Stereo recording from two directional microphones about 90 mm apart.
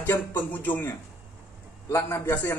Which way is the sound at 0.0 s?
25° left (ahead or behind).